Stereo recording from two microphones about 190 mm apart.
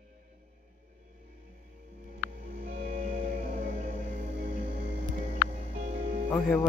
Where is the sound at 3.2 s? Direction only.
40° right (ahead or behind).